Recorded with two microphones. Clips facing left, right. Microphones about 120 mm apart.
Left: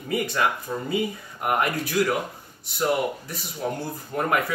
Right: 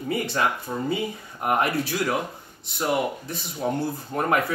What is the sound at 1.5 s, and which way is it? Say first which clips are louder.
Speech: right 1 dB; 25° right (ahead or behind).